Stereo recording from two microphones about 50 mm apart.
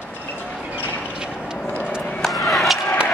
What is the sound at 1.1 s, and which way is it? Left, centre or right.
Vehicle, centre.